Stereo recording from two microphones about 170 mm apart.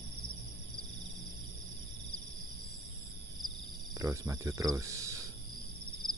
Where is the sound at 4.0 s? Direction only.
15° right (ahead or behind).